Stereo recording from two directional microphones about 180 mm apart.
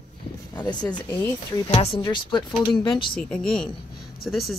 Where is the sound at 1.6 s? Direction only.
35° left (ahead or behind).